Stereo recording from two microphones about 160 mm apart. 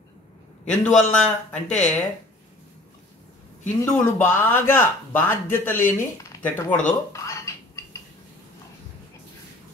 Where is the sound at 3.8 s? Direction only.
15° left (ahead or behind).